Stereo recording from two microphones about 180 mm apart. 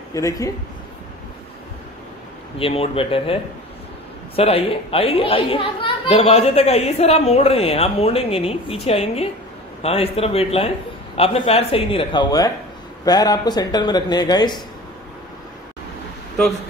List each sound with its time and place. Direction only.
0.1 s speech: 20° left (ahead or behind)
2.6 s a child's voice: 30° left (ahead or behind)
4.4 s a child's voice: 35° left (ahead or behind)